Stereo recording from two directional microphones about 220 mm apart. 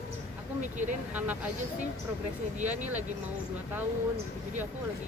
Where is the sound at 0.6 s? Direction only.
35° right (ahead or behind).